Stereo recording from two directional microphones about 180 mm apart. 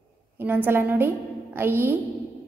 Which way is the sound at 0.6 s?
10° right (ahead or behind).